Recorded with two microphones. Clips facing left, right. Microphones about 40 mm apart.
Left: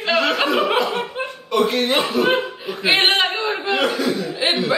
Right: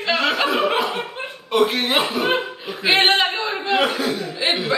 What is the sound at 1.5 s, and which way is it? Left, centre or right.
Speech, centre.